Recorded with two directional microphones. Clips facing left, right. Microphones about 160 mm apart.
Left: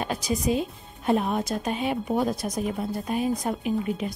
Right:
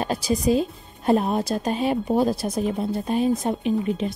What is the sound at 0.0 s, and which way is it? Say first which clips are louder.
Speech: right 4 dB; 35° right (ahead or behind).